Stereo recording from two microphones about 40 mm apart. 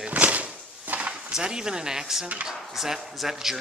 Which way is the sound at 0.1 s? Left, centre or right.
Right.